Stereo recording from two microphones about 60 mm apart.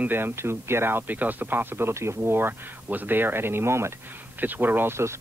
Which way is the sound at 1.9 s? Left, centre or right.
Right.